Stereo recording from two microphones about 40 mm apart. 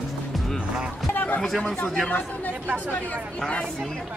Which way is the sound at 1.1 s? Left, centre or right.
Left.